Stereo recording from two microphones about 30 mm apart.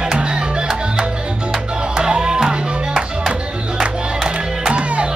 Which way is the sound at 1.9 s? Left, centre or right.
Right.